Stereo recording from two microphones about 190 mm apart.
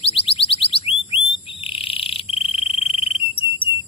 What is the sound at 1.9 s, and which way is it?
Frog, 30° left (ahead or behind).